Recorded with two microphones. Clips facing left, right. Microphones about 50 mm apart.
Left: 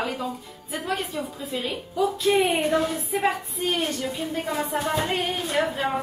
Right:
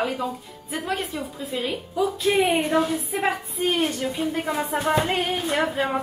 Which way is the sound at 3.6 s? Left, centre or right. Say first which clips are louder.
Right 3 dB; centre.